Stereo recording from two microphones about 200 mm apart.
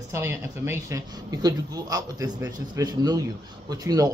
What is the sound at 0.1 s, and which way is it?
Speech, 10° right (ahead or behind).